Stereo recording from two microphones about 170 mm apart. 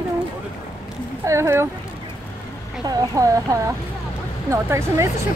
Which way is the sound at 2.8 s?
20° right (ahead or behind).